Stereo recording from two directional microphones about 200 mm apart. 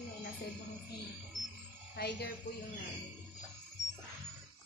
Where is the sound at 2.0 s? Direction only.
50° left (ahead or behind).